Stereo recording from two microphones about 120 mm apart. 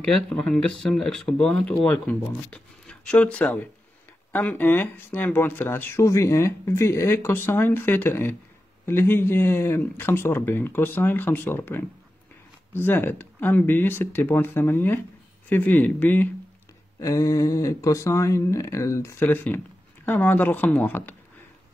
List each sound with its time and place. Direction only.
0.0 s speech: 5° left (ahead or behind)
17.0 s speech: 25° left (ahead or behind)